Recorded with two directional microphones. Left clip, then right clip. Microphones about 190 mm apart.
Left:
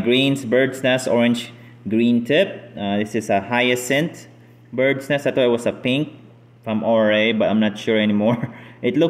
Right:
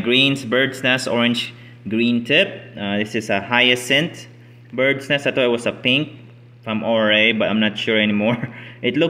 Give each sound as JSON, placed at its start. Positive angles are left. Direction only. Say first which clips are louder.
{"t": 0.0, "sound": "speech", "louder": "right 2 dB", "side_deg": 0}
{"t": 1.9, "sound": "speech", "louder": "even", "side_deg": 5}